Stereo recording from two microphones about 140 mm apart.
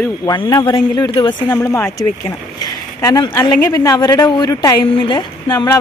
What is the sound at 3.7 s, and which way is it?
Speech, 25° left (ahead or behind).